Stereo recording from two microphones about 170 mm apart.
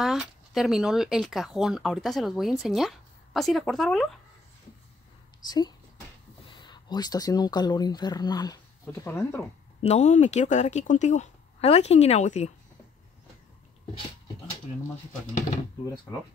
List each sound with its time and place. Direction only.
0.0 s speech: centre (ahead or behind)
5.5 s speech: 25° left (ahead or behind)
9.8 s speech: 40° left (ahead or behind)